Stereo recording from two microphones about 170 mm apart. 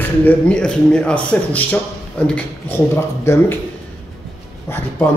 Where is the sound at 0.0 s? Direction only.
10° left (ahead or behind).